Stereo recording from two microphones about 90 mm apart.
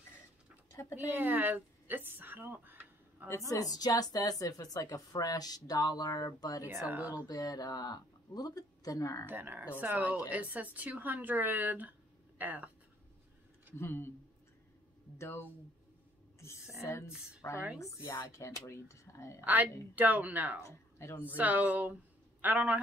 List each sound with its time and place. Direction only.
0.7 s a sound: 35° left (ahead or behind)
0.9 s speech: 20° right (ahead or behind)
3.3 s a woman's voice: 35° left (ahead or behind)
6.6 s speech: 25° right (ahead or behind)
7.2 s a woman's voice: 45° left (ahead or behind)
9.2 s speech: 20° right (ahead or behind)
13.7 s speech: 25° left (ahead or behind)
15.1 s speech: 30° left (ahead or behind)
16.8 s a woman's voice: 30° left (ahead or behind)
19.4 s speech: 20° right (ahead or behind)
20.6 s speech: 30° left (ahead or behind)
21.4 s speech: 20° right (ahead or behind)